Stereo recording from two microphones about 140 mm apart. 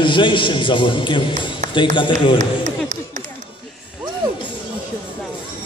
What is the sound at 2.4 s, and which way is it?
Speech, 60° right (ahead or behind).